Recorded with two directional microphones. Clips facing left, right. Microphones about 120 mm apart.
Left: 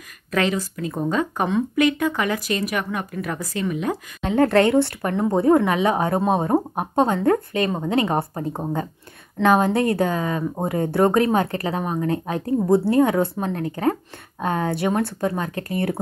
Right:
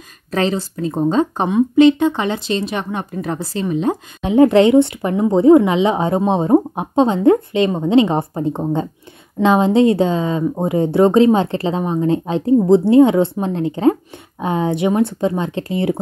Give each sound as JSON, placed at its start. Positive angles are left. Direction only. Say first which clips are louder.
{"t": 0.3, "sound": "speech", "louder": "right 3 dB", "side_deg": -30}